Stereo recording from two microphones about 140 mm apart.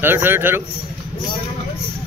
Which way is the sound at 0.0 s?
15° right (ahead or behind).